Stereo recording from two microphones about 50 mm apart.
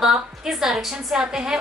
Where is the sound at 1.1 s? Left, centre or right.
Centre.